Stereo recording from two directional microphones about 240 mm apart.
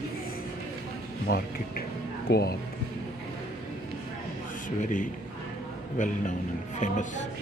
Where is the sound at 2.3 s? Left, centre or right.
Left.